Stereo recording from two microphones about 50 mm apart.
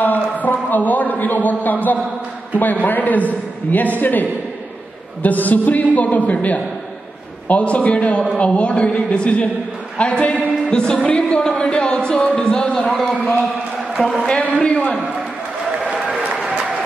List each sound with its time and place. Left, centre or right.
0.0 s a sound: left
2.6 s a man's voice: left
10.7 s music: centre
11.1 s speech: left; by 13.2 s centre
13.9 s a man's voice: centre
14.4 s speech: left
15.8 s applause: centre